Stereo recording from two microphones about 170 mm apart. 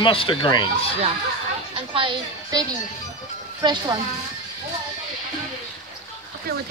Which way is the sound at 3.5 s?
25° right (ahead or behind).